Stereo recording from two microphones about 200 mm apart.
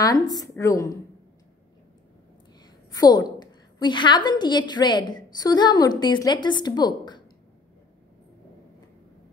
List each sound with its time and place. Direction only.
0.0 s speech: 20° left (ahead or behind)
2.6 s a woman's voice: 20° left (ahead or behind)